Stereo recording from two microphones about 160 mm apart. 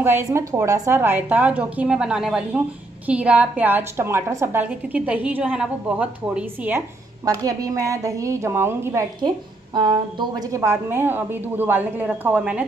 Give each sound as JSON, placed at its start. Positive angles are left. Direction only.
{"t": 0.0, "sound": "a woman's voice", "side_deg": -15}
{"t": 7.2, "sound": "a woman's voice", "side_deg": -20}
{"t": 9.8, "sound": "a woman's voice", "side_deg": -30}